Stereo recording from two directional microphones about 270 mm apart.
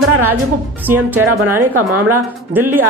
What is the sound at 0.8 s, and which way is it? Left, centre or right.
Speech, centre.